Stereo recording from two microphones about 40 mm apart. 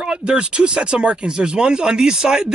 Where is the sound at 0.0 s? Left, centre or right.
Right.